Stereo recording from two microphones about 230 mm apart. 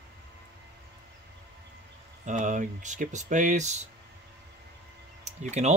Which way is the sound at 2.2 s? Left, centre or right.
Right.